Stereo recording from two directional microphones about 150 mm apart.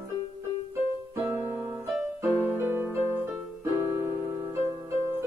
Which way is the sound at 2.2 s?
15° right (ahead or behind).